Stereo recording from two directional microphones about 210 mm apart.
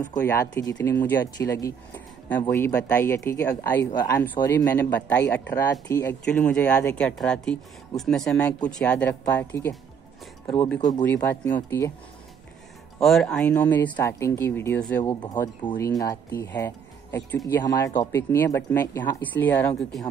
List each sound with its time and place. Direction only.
0.2 s speech: 10° left (ahead or behind)
13.0 s speech: centre (ahead or behind)
15.2 s speech: 20° left (ahead or behind)